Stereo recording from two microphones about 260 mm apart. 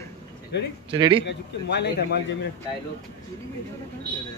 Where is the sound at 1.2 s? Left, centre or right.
Left.